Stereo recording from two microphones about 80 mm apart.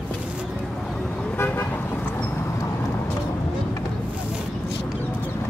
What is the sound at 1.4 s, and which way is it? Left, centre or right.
Vehicle, left.